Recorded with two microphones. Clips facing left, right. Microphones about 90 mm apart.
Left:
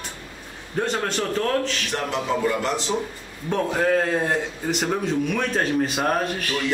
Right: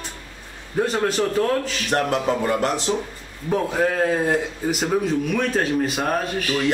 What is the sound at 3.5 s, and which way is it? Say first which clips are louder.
A man's voice: even; 5° right (ahead or behind).